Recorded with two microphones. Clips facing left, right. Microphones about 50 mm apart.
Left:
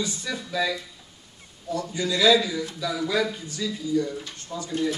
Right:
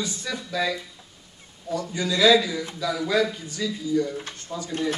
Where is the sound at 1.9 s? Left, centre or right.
Right.